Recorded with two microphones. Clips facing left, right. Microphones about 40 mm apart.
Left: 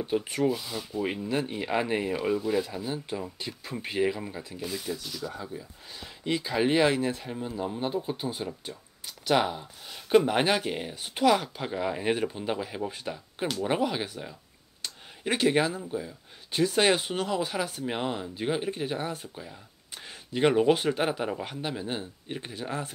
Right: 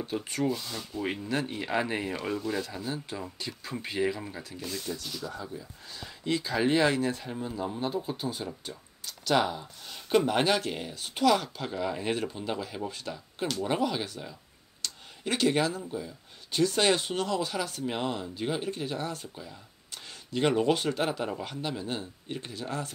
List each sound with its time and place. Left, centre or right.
0.0 s speech: centre
14.8 s a sound: centre
15.8 s speech: centre